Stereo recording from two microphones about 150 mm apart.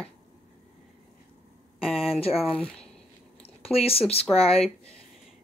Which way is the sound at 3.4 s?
40° left (ahead or behind).